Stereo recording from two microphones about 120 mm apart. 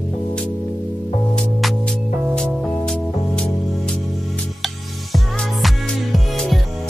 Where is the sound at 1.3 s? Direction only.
5° left (ahead or behind).